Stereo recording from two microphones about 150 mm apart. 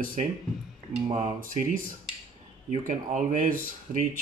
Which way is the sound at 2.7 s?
55° right (ahead or behind).